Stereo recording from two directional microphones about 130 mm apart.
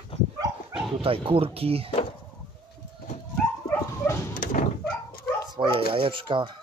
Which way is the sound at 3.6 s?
20° left (ahead or behind).